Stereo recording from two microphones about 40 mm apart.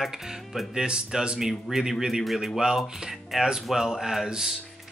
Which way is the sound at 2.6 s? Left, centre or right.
Centre.